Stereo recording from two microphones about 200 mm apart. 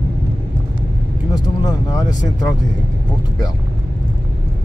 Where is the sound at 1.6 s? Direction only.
20° left (ahead or behind).